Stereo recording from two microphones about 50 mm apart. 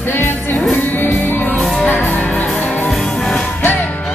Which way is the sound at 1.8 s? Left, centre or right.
Left.